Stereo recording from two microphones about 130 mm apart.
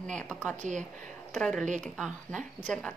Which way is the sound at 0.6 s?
70° right (ahead or behind).